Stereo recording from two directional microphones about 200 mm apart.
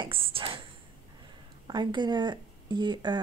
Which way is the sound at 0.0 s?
25° right (ahead or behind).